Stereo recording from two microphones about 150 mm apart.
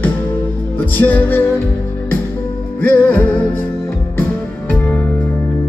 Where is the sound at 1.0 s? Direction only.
10° left (ahead or behind).